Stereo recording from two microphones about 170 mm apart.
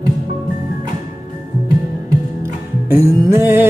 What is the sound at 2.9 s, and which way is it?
Music, 15° right (ahead or behind).